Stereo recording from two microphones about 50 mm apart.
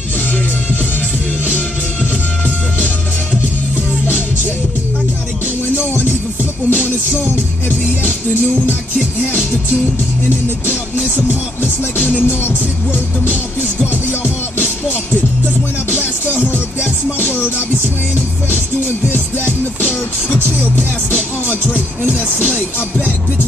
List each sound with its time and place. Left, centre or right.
6.7 s music: left
12.0 s music: left
15.9 s music: left
19.8 s music: left